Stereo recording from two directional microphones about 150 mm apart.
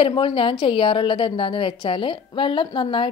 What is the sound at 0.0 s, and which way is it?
A woman's voice, 35° left (ahead or behind).